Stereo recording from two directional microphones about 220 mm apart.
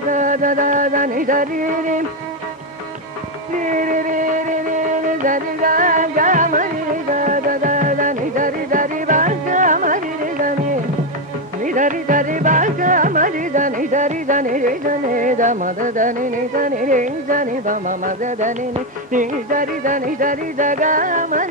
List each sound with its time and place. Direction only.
0.1 s music: 35° right (ahead or behind)
3.6 s music: 35° right (ahead or behind)